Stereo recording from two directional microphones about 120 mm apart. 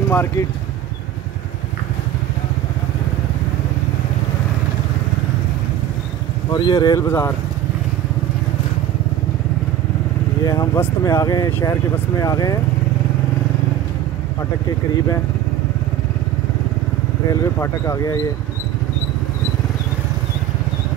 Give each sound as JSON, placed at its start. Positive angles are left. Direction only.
{"t": 0.1, "sound": "speech", "side_deg": 20}
{"t": 6.5, "sound": "speech", "side_deg": 35}
{"t": 7.0, "sound": "speech", "side_deg": 20}
{"t": 10.4, "sound": "speech", "side_deg": 30}
{"t": 17.3, "sound": "speech", "side_deg": 30}